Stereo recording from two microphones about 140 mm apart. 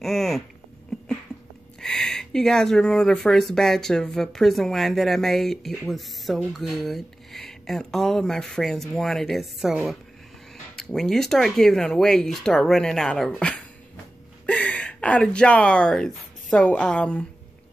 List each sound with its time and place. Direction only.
0.0 s speech: centre (ahead or behind)
1.8 s speech: 5° left (ahead or behind)